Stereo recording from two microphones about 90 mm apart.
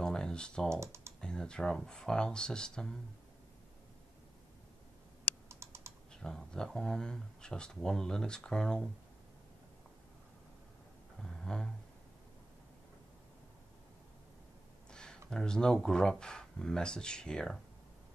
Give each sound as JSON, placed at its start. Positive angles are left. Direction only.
{"t": 0.0, "sound": "computer keyboard", "side_deg": 10}
{"t": 0.7, "sound": "speech", "side_deg": -30}
{"t": 1.2, "sound": "speech", "side_deg": 10}
{"t": 5.5, "sound": "typing", "side_deg": -30}
{"t": 6.1, "sound": "speech", "side_deg": 5}
{"t": 11.2, "sound": "a sound", "side_deg": 5}
{"t": 14.9, "sound": "speech", "side_deg": 10}